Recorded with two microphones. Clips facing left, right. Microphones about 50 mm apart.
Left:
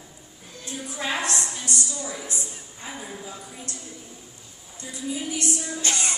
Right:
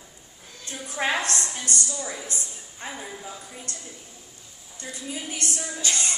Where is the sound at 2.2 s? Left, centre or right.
Right.